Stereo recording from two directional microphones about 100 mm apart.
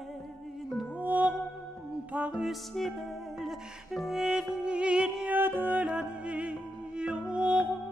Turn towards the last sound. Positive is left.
turn(degrees=-10)  # may be behind; listen again after turning